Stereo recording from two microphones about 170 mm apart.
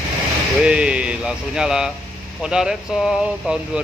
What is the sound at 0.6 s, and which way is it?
Speech, 5° right (ahead or behind).